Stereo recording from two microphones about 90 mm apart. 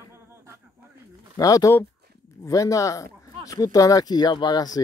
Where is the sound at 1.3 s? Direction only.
40° left (ahead or behind).